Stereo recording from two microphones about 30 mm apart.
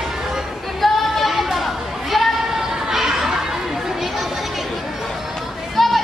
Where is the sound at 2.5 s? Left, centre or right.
Centre.